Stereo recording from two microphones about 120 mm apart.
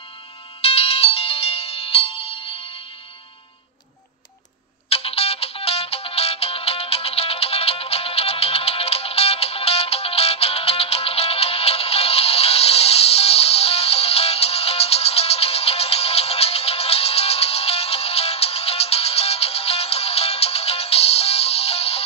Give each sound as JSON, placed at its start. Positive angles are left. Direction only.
{"t": 0.7, "sound": "ringtone", "side_deg": 55}
{"t": 4.8, "sound": "music", "side_deg": 55}